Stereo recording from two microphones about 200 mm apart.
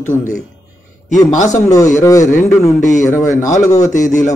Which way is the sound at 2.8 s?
40° left (ahead or behind).